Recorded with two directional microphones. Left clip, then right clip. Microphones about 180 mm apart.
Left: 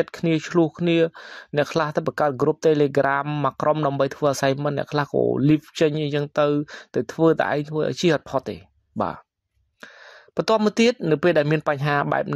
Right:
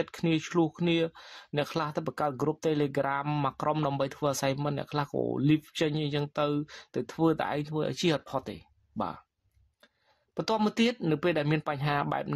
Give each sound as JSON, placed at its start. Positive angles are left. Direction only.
{"t": 0.0, "sound": "speech", "side_deg": 25}
{"t": 10.3, "sound": "speech", "side_deg": 30}